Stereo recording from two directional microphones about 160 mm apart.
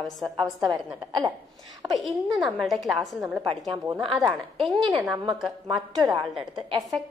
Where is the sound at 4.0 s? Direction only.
35° right (ahead or behind).